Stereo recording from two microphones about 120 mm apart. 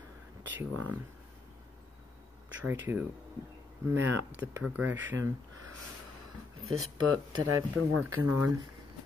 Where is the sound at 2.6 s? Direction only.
15° right (ahead or behind).